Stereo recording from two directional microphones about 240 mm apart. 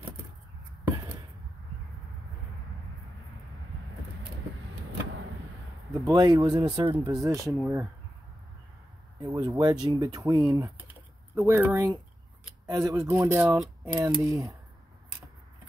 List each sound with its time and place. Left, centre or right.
5.9 s speech: centre
9.2 s speech: centre